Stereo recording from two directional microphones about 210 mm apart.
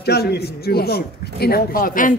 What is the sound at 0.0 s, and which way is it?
A man's voice, 50° left (ahead or behind).